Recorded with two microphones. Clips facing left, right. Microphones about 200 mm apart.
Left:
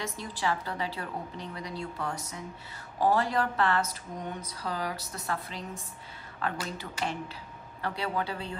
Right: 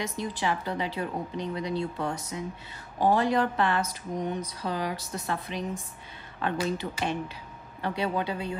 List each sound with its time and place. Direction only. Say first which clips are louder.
0.0 s speech: right 3 dB; 20° right (ahead or behind)